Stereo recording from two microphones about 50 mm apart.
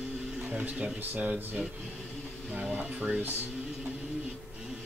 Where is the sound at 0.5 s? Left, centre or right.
Right.